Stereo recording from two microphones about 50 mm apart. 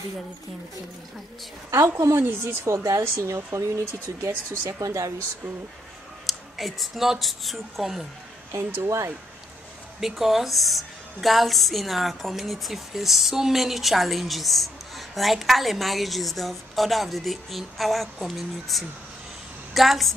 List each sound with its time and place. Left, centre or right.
2.0 s speech: right
6.2 s speech: centre
8.5 s speech: right
9.9 s a woman's voice: centre